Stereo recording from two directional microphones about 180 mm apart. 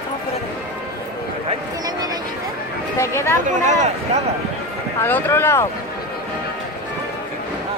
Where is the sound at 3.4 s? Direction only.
40° right (ahead or behind).